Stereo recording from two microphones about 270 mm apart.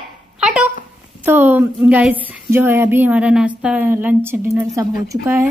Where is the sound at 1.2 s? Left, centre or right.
Centre.